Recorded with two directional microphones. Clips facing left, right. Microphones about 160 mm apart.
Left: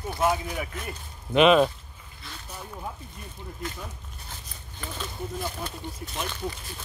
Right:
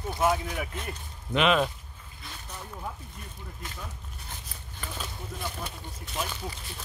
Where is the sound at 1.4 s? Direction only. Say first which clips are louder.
Left 6 dB; 20° left (ahead or behind).